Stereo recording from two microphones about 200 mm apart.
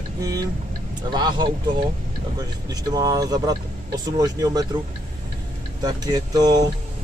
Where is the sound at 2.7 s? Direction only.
20° right (ahead or behind).